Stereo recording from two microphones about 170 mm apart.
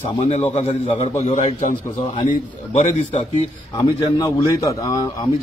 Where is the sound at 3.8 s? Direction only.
20° left (ahead or behind).